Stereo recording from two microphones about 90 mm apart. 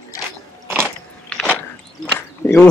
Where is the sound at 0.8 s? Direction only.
10° left (ahead or behind).